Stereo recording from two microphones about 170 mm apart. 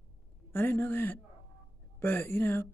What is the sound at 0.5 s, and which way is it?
Speech, 10° left (ahead or behind).